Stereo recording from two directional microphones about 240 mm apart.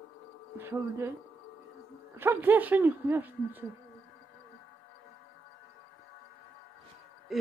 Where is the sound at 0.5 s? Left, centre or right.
Centre.